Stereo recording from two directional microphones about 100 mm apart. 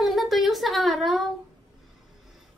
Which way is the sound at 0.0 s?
Centre (ahead or behind).